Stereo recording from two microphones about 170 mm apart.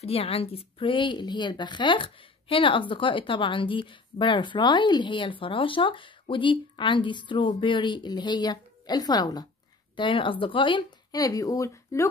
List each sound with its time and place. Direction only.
0.0 s a woman's voice: 35° left (ahead or behind); by 12.1 s 15° left (ahead or behind)